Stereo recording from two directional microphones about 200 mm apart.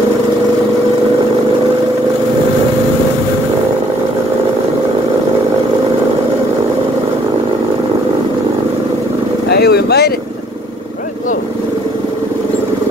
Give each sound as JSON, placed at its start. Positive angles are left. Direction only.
{"t": 9.5, "sound": "vehicle", "side_deg": 55}